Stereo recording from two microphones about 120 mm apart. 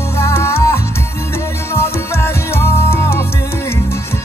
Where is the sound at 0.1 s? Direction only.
25° left (ahead or behind).